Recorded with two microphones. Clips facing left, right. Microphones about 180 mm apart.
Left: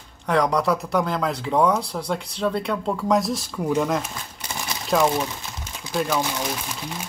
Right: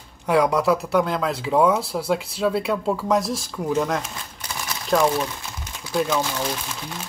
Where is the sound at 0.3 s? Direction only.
5° right (ahead or behind).